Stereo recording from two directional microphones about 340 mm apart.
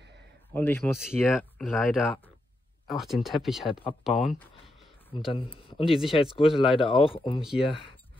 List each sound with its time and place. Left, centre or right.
0.5 s speech: centre
5.3 s speech: centre
5.9 s speech: centre
6.2 s speech: centre
7.4 s speech: centre